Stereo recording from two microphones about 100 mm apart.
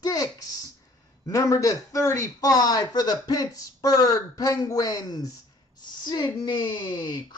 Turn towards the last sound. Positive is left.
turn(degrees=45)  # may be behind; listen again after turning